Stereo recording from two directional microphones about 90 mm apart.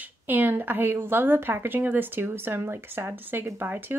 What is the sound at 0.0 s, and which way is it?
Speech, 20° right (ahead or behind).